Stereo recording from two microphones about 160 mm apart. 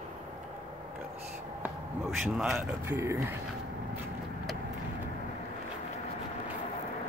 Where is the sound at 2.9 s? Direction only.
15° right (ahead or behind).